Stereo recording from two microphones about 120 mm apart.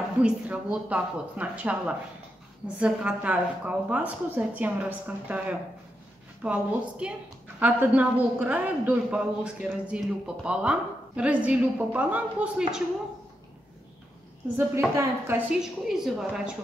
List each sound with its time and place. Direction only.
0.2 s a woman's voice: 10° right (ahead or behind)
14.6 s a woman's voice: 20° right (ahead or behind)
15.5 s a woman's voice: 5° right (ahead or behind)